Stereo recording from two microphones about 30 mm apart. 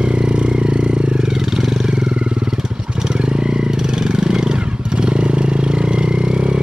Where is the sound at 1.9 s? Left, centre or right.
Right.